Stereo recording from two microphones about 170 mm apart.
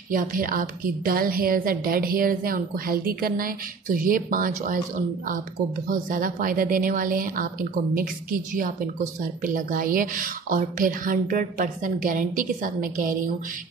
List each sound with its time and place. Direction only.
0.1 s a woman's voice: 55° right (ahead or behind)
5.9 s a woman's voice: 50° right (ahead or behind)